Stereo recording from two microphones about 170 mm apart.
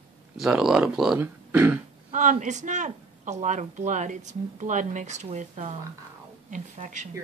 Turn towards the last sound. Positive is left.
turn(degrees=-45)  # may be behind; listen again after turning